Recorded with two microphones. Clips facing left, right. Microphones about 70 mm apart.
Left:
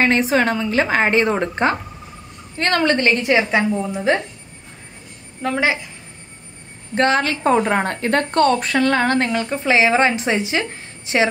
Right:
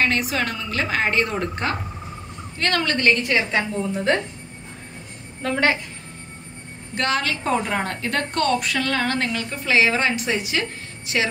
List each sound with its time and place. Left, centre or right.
0.0 s a woman's voice: left
5.4 s a woman's voice: centre
7.0 s a woman's voice: left